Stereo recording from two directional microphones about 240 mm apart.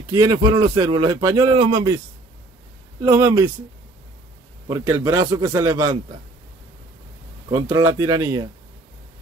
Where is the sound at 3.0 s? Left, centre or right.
Centre.